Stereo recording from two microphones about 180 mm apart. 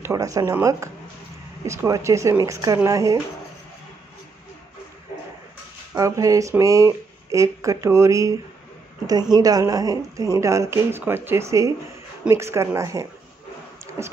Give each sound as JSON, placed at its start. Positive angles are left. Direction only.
{"t": 0.0, "sound": "a woman's voice", "side_deg": -20}
{"t": 5.9, "sound": "a woman's voice", "side_deg": -20}